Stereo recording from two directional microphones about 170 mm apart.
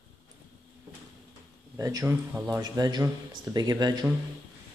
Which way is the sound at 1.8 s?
20° right (ahead or behind).